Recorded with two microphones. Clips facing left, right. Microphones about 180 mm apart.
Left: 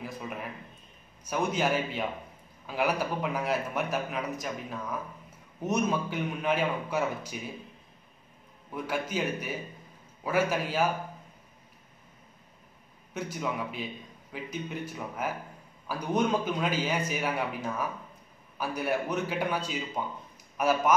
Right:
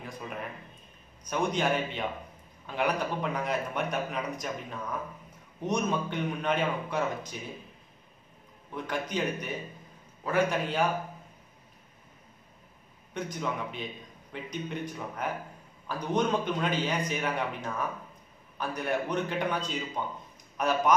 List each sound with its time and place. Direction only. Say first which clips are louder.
0.0 s a man's voice: left 1 dB; 5° left (ahead or behind)
8.7 s a man's voice: left 1 dB; 10° left (ahead or behind)
13.1 s a man's voice: even; 5° left (ahead or behind)